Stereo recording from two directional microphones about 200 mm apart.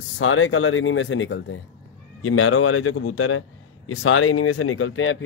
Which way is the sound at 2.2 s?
90° left.